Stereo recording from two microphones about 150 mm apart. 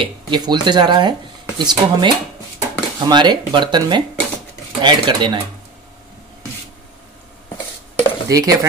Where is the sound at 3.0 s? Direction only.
30° right (ahead or behind).